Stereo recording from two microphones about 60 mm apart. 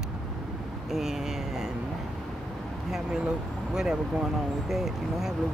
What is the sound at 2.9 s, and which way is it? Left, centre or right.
Speech, centre.